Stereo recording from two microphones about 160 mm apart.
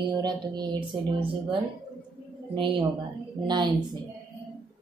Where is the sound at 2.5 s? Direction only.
30° right (ahead or behind).